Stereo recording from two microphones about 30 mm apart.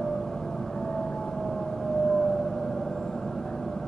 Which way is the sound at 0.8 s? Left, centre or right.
Centre.